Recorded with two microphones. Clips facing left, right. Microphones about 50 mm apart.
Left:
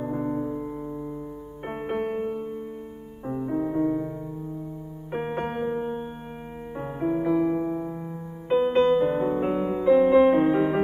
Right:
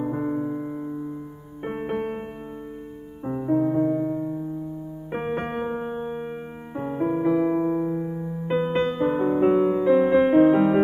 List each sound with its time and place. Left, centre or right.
0.0 s music: centre
1.6 s music: centre
3.3 s music: centre
5.6 s music: centre
6.7 s music: centre
7.4 s music: centre